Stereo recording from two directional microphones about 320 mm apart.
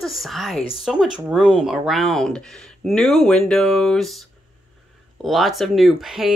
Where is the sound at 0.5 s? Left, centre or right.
Centre.